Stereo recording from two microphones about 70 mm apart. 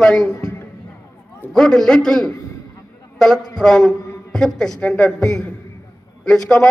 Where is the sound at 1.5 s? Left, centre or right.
Centre.